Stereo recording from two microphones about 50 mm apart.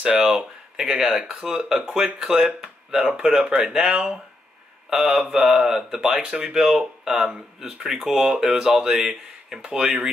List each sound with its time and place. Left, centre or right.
0.3 s speech: centre